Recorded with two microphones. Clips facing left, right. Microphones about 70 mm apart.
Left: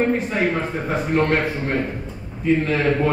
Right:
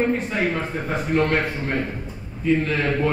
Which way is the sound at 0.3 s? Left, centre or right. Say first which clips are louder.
Left 2 dB; centre.